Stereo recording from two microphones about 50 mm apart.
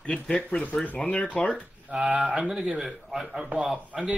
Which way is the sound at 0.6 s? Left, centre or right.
Left.